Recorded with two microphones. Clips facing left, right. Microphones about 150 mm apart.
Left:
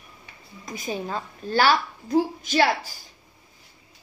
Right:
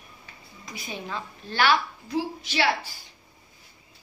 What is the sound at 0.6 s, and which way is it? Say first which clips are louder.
A woman's voice: left 6 dB; 45° left (ahead or behind).